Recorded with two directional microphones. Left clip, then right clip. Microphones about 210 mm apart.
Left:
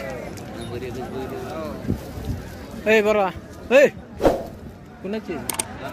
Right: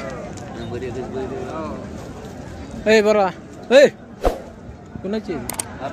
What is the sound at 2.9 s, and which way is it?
Speech, 15° right (ahead or behind).